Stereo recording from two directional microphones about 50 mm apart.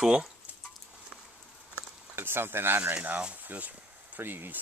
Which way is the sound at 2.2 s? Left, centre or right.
Right.